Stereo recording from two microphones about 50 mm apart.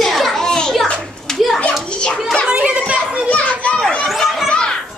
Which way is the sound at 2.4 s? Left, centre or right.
Right.